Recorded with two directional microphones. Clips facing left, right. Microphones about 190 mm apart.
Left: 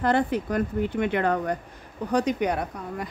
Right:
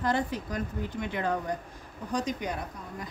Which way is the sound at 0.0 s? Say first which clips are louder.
Left 6 dB; 60° left (ahead or behind).